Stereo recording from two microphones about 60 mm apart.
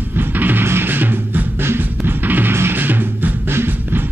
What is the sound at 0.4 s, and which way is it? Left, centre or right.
Music, right.